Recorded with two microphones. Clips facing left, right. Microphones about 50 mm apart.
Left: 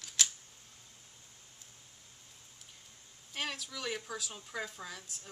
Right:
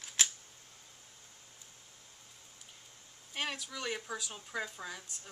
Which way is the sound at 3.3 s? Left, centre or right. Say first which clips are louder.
Right 1 dB; centre.